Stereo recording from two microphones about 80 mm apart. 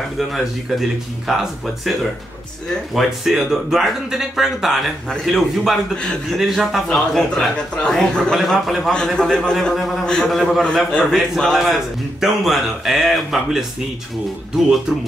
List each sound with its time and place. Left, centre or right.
0.3 s a man's voice: centre
2.7 s a man's voice: centre
8.9 s a man's voice: centre